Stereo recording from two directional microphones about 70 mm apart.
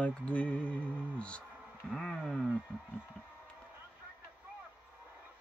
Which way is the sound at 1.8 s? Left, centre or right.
Centre.